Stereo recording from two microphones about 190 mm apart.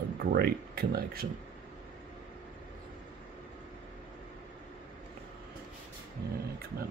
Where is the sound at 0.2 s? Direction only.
55° right (ahead or behind).